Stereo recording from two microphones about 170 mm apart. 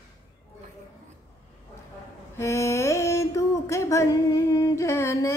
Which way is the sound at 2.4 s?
15° left (ahead or behind).